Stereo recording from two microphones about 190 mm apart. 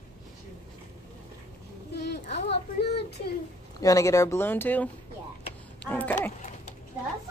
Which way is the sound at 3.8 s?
15° left (ahead or behind).